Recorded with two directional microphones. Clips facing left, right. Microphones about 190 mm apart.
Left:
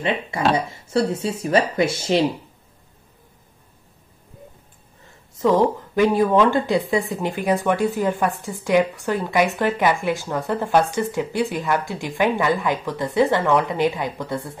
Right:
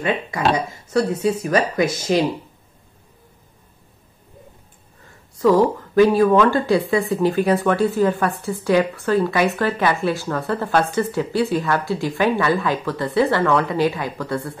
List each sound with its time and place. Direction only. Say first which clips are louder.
0.3 s speech: even; 30° left (ahead or behind)
5.9 s a woman's voice: right 3 dB; 20° left (ahead or behind)